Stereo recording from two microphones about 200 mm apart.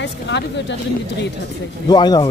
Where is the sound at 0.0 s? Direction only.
60° left (ahead or behind).